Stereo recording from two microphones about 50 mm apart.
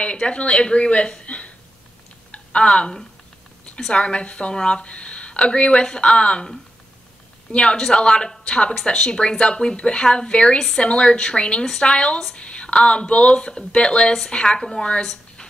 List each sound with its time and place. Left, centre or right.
0.0 s a woman's voice: left
7.5 s a woman's voice: centre